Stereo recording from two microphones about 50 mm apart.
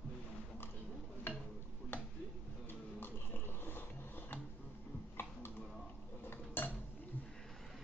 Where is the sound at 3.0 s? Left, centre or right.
Left.